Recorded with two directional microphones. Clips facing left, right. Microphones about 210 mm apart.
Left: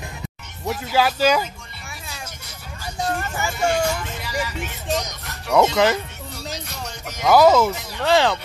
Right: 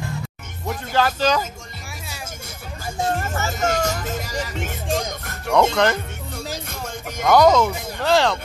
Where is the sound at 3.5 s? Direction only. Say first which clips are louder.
Left 2 dB; 40° right (ahead or behind).